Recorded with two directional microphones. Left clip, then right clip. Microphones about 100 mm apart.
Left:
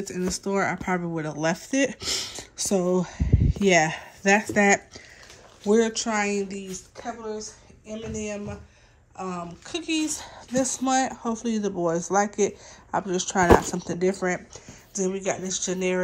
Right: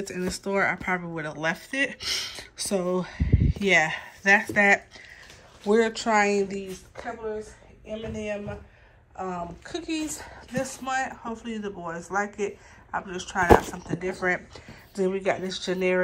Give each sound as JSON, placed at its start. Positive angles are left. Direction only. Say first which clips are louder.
{"t": 0.0, "sound": "speech", "louder": "left 2 dB", "side_deg": 35}
{"t": 1.6, "sound": "speech", "louder": "left 2 dB", "side_deg": 75}
{"t": 5.7, "sound": "speech", "louder": "even", "side_deg": 40}
{"t": 7.9, "sound": "speech", "louder": "right 1 dB", "side_deg": 35}
{"t": 9.1, "sound": "a woman's voice", "louder": "right 1 dB", "side_deg": 20}
{"t": 9.7, "sound": "speech", "louder": "left 6 dB", "side_deg": 50}
{"t": 10.8, "sound": "speech", "louder": "left 5 dB", "side_deg": 90}
{"t": 11.4, "sound": "speech", "louder": "left 11 dB", "side_deg": 65}
{"t": 13.0, "sound": "speech", "louder": "left 3 dB", "side_deg": 90}
{"t": 14.5, "sound": "speech", "louder": "left 4 dB", "side_deg": 30}